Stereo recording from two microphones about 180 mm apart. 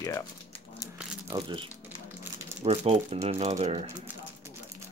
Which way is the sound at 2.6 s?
35° right (ahead or behind).